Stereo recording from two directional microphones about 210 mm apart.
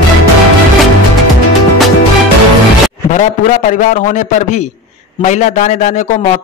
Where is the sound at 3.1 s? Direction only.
35° left (ahead or behind).